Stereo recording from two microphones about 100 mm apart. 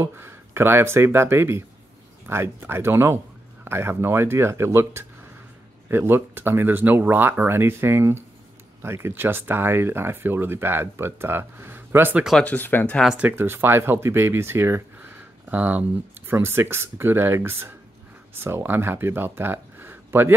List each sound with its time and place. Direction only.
0.0 s speech: 25° right (ahead or behind)
12.4 s speech: 15° left (ahead or behind)
13.2 s speech: 20° right (ahead or behind)